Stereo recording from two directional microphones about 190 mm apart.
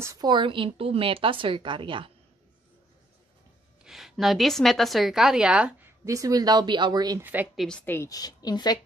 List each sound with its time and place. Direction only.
0.0 s a woman's voice: 20° right (ahead or behind)
3.8 s a woman's voice: centre (ahead or behind); by 7.2 s 20° right (ahead or behind)
7.2 s speech: 10° right (ahead or behind)
7.6 s a woman's voice: 5° left (ahead or behind)